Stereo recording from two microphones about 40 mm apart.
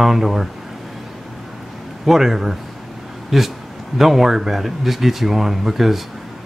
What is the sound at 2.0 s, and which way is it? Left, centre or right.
Speech, centre.